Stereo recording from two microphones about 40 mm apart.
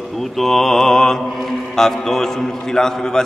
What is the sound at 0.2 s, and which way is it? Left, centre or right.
A man's voice, centre.